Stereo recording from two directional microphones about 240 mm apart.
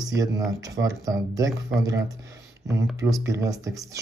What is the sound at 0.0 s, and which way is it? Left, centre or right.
Speech, centre.